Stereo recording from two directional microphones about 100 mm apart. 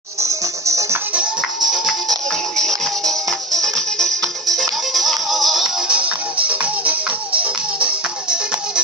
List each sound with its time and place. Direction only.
0.2 s music: 30° right (ahead or behind)
1.7 s music: centre (ahead or behind)